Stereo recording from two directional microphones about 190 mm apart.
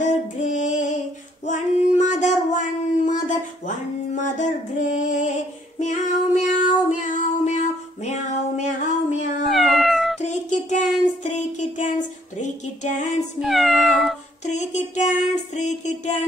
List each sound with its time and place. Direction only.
0.0 s female singing: 40° left (ahead or behind)
6.4 s child singing: 40° left (ahead or behind)
9.5 s cat: centre (ahead or behind)
10.2 s child singing: 40° left (ahead or behind)
13.4 s meow: centre (ahead or behind)
14.4 s a sound: 40° left (ahead or behind)